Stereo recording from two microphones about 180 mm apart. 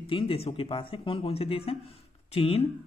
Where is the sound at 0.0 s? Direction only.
30° left (ahead or behind).